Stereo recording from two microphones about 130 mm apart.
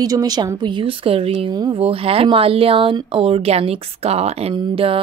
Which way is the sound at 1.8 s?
45° right (ahead or behind).